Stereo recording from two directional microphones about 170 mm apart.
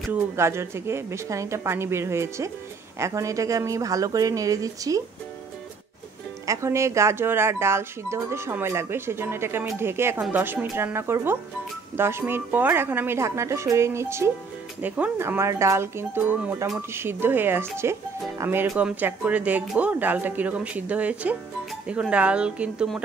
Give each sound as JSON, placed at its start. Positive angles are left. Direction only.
{"t": 0.1, "sound": "speech", "side_deg": -15}
{"t": 6.4, "sound": "speech", "side_deg": -20}